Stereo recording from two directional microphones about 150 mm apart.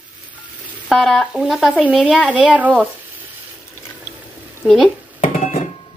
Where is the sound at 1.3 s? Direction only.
5° right (ahead or behind).